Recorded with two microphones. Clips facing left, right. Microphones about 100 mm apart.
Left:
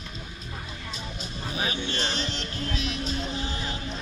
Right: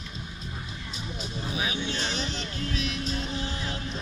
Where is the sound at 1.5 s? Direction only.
5° right (ahead or behind).